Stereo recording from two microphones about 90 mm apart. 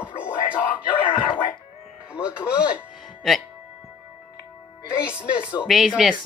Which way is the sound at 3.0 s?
Centre (ahead or behind).